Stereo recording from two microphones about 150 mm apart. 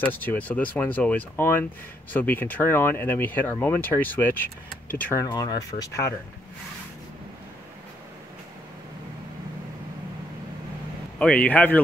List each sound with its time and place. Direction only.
0.0 s speech: 10° left (ahead or behind)
5.2 s speech: 25° left (ahead or behind)
11.1 s speech: 10° left (ahead or behind)